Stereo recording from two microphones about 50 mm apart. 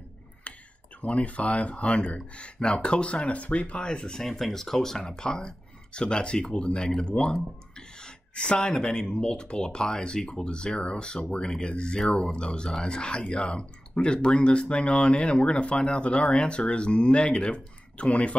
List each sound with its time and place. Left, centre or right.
1.0 s speech: left